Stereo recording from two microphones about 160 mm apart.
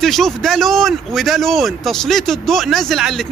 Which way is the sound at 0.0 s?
Centre (ahead or behind).